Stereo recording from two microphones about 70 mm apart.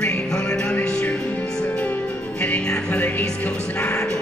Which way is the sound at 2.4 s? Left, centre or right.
Centre.